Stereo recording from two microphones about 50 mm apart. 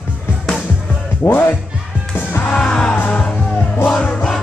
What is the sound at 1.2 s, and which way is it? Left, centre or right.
Speech, left.